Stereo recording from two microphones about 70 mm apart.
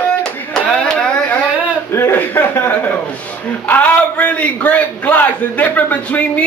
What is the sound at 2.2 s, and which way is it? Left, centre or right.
Chuckle, left.